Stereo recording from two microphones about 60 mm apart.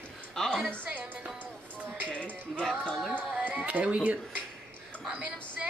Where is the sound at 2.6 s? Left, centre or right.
Centre.